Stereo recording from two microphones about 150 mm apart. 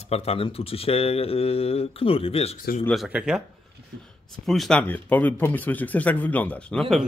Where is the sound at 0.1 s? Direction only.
40° left (ahead or behind).